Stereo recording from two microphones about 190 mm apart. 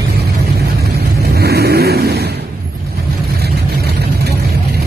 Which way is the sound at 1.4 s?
55° right (ahead or behind).